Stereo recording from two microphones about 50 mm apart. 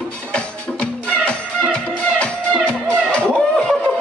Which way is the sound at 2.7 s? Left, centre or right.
Centre.